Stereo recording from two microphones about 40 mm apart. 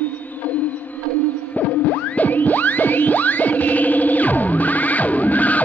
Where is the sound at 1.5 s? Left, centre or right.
Left.